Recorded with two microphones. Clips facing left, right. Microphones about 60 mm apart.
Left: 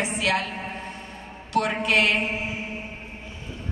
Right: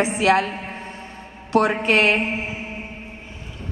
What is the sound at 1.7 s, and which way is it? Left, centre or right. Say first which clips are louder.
Speech: right 4 dB; right.